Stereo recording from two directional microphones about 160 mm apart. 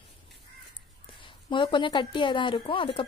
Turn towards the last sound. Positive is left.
turn(degrees=35)  # may be behind; listen again after turning